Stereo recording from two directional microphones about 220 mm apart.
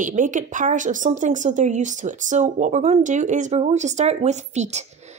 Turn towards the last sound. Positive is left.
turn(degrees=-30)  # may be behind; listen again after turning